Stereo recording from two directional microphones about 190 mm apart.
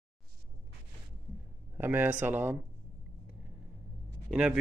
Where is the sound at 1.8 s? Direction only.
10° right (ahead or behind).